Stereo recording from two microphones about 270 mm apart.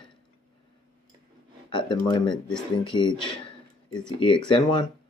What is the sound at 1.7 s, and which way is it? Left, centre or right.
Speech, centre.